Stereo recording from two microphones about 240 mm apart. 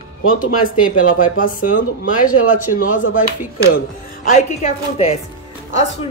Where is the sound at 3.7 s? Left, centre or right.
Left.